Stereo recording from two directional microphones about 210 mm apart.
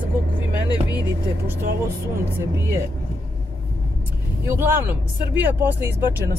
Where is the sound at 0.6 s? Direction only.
20° left (ahead or behind).